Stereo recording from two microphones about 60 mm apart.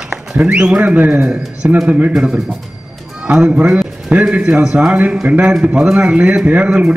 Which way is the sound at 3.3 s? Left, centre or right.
Right.